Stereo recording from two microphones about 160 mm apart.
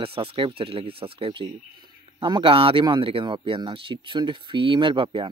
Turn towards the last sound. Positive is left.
turn(degrees=-30)  # may be behind; listen again after turning